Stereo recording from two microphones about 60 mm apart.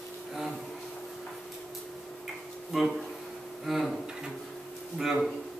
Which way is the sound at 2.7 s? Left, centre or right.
Centre.